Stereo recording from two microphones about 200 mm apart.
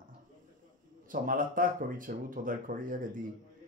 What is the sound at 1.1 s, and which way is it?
Speech, 45° right (ahead or behind).